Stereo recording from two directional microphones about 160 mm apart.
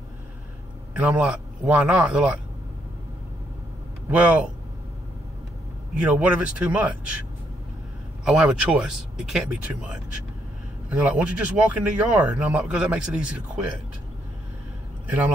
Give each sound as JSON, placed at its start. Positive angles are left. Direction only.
{"t": 0.9, "sound": "speech", "side_deg": -10}
{"t": 4.1, "sound": "speech", "side_deg": -10}
{"t": 5.9, "sound": "speech", "side_deg": -10}
{"t": 8.3, "sound": "speech", "side_deg": -5}